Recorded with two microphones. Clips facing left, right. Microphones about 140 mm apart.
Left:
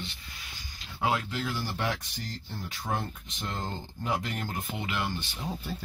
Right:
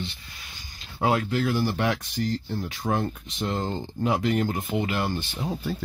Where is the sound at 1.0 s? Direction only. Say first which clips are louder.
Right 6 dB; 55° right (ahead or behind); by 2.0 s 70° right (ahead or behind).